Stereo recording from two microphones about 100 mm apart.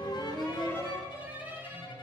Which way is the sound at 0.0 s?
45° left (ahead or behind).